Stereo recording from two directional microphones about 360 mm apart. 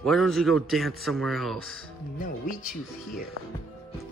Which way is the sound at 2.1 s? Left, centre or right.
Left.